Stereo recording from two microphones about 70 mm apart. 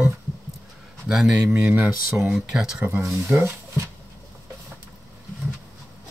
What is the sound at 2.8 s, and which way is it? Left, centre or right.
Speech, right.